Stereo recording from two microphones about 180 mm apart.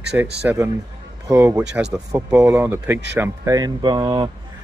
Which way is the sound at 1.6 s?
5° right (ahead or behind).